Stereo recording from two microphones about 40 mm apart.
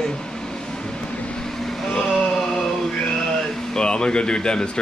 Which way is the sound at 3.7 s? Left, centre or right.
Left.